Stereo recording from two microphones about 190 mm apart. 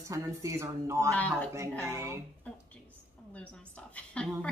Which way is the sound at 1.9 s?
15° right (ahead or behind).